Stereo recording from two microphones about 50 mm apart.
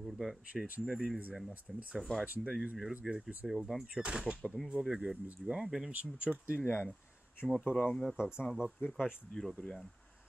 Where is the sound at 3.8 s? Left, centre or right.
Right.